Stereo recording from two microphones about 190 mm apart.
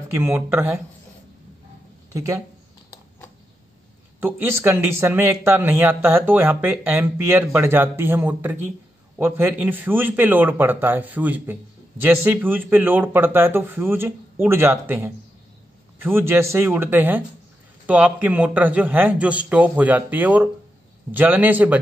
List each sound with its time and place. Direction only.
0.1 s speech: 15° right (ahead or behind)
2.1 s speech: 15° right (ahead or behind)
4.2 s speech: 10° right (ahead or behind)